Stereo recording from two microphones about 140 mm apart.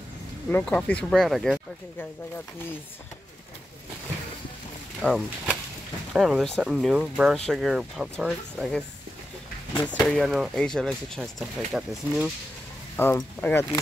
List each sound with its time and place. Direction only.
0.5 s speech: 10° left (ahead or behind)
5.0 s speech: 10° left (ahead or behind)
6.1 s speech: centre (ahead or behind)
12.9 s speech: 15° left (ahead or behind)